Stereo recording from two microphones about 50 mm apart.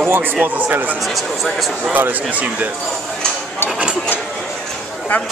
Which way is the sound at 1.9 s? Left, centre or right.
Right.